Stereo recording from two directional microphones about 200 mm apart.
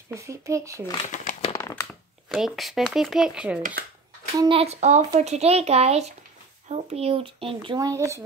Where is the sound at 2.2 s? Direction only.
Centre (ahead or behind).